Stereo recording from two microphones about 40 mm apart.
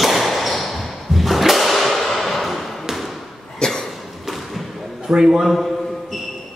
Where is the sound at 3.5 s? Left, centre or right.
Centre.